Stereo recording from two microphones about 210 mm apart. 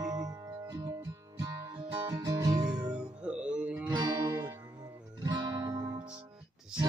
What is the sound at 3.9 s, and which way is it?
Music, 20° right (ahead or behind).